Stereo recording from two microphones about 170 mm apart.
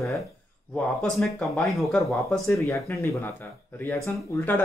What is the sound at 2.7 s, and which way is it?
Speech, 15° left (ahead or behind).